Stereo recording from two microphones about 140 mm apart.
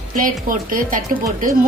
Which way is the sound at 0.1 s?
75° right (ahead or behind).